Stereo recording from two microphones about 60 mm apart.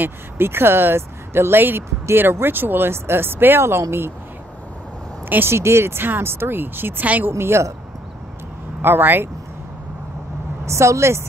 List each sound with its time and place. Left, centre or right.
0.0 s speech: right
5.3 s speech: right
7.3 s a woman's voice: right
8.8 s speech: right
10.6 s a woman's voice: right